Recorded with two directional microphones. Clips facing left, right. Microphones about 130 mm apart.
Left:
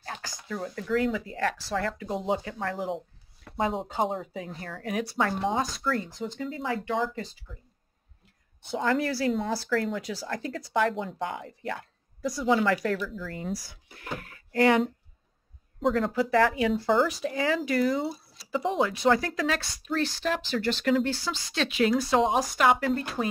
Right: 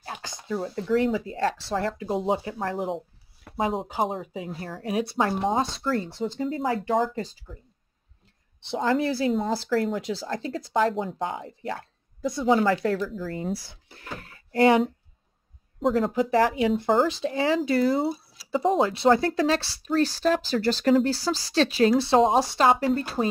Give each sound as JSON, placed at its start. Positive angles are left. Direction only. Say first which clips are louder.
{"t": 0.0, "sound": "speech", "louder": "right 2 dB", "side_deg": -20}
{"t": 3.4, "sound": "speech", "louder": "right 2 dB", "side_deg": -5}
{"t": 4.6, "sound": "a woman's voice", "louder": "right 4 dB", "side_deg": -30}
{"t": 8.8, "sound": "speech", "louder": "right 3 dB", "side_deg": -25}
{"t": 9.7, "sound": "a woman's voice", "louder": "right 3 dB", "side_deg": -35}
{"t": 13.0, "sound": "a woman's voice", "louder": "right 4 dB", "side_deg": -40}
{"t": 15.8, "sound": "speech", "louder": "right 2 dB", "side_deg": -5}
{"t": 16.1, "sound": "a woman's voice", "louder": "right 2 dB", "side_deg": -20}
{"t": 18.0, "sound": "a sound", "louder": "right 5 dB", "side_deg": 0}
{"t": 18.5, "sound": "a woman's voice", "louder": "right 4 dB", "side_deg": -35}